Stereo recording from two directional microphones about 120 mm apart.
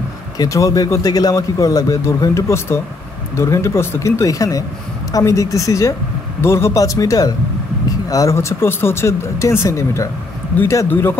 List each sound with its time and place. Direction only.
0.4 s a man's voice: 25° left (ahead or behind)